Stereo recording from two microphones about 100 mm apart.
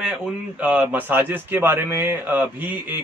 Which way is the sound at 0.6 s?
15° right (ahead or behind).